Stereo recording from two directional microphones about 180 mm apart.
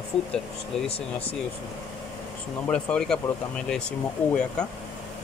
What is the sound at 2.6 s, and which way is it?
Speech, 5° left (ahead or behind).